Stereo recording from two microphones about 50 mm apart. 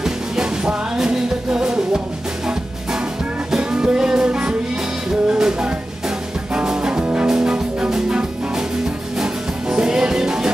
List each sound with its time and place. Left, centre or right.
0.0 s music: centre
3.5 s music: centre